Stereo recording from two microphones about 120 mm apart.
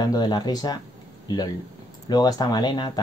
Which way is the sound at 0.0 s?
35° left (ahead or behind).